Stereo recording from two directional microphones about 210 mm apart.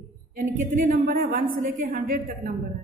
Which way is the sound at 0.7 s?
40° right (ahead or behind).